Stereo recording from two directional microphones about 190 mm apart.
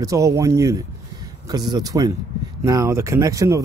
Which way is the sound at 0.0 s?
15° right (ahead or behind).